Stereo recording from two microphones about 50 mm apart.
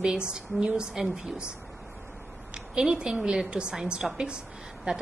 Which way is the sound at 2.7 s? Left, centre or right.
Centre.